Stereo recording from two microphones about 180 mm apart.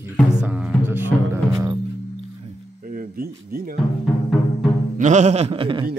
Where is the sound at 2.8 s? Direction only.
50° right (ahead or behind).